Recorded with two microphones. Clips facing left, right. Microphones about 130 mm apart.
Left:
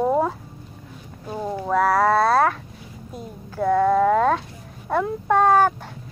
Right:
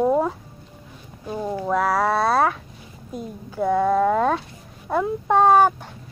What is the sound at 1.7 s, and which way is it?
A child's voice, 5° right (ahead or behind).